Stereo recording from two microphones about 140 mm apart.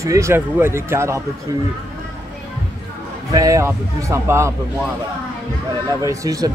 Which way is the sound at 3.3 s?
25° right (ahead or behind).